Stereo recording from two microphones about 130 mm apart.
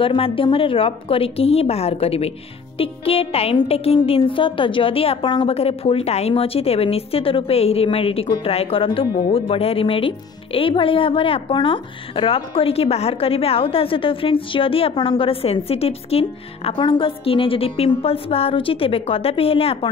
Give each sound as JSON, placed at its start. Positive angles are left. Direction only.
{"t": 0.0, "sound": "a woman's voice", "side_deg": 45}
{"t": 5.5, "sound": "a woman's voice", "side_deg": 50}